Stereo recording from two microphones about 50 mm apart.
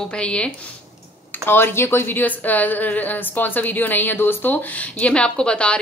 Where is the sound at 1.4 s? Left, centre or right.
Left.